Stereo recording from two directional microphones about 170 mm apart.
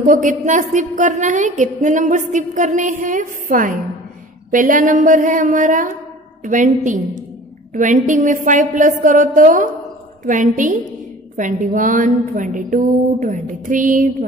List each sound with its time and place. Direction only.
0.0 s a woman's voice: 50° right (ahead or behind)